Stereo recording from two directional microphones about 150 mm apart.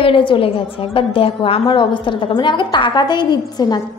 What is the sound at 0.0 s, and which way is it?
A woman's voice, 35° left (ahead or behind).